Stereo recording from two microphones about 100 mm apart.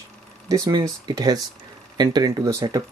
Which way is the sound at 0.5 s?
40° right (ahead or behind).